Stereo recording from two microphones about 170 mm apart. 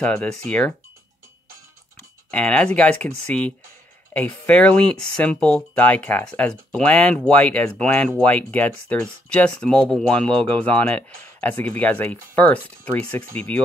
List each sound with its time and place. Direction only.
0.0 s speech: 5° left (ahead or behind)
2.3 s speech: 5° left (ahead or behind)